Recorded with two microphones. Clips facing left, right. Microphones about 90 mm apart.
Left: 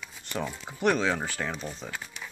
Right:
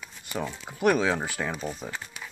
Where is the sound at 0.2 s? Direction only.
5° right (ahead or behind).